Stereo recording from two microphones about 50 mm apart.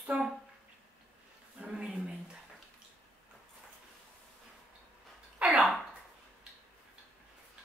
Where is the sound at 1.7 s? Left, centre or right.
Centre.